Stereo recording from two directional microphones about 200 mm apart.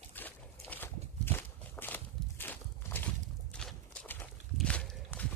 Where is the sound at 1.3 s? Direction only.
10° left (ahead or behind).